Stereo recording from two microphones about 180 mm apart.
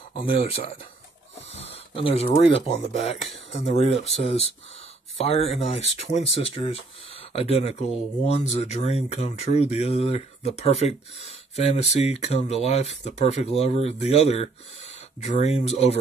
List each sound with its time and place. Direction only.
0.1 s speech: 30° left (ahead or behind)
5.2 s speech: 35° left (ahead or behind)